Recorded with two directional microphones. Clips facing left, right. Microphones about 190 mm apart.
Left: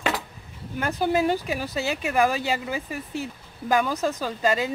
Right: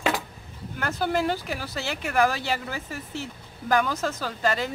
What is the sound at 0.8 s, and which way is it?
A woman's voice, 15° left (ahead or behind).